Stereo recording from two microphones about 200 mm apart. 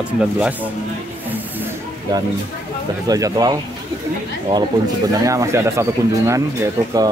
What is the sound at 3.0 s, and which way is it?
Speech, 20° right (ahead or behind).